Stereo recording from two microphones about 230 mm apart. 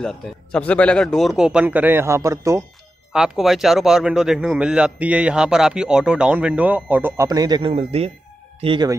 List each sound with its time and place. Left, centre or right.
0.0 s speech: centre
3.1 s speech: centre; by 8.9 s right